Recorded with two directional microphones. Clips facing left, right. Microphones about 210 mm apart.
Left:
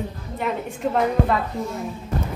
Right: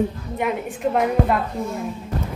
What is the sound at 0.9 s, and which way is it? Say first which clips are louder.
Speech: right 1 dB; 5° right (ahead or behind).